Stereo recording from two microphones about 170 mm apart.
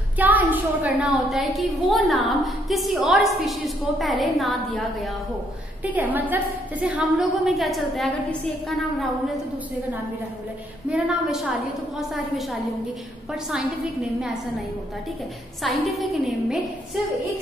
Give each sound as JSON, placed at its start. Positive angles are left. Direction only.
{"t": 0.2, "sound": "a woman's voice", "side_deg": -10}
{"t": 5.9, "sound": "a woman's voice", "side_deg": -10}
{"t": 10.9, "sound": "a woman's voice", "side_deg": -5}
{"t": 15.6, "sound": "a woman's voice", "side_deg": 0}